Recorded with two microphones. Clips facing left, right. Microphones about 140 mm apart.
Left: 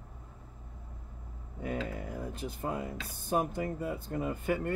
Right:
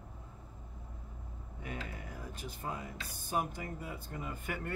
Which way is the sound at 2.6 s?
55° left (ahead or behind).